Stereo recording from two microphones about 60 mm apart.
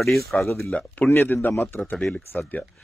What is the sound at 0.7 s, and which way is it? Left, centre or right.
Speech, left.